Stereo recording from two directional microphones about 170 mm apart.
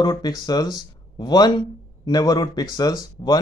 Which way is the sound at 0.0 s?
20° left (ahead or behind).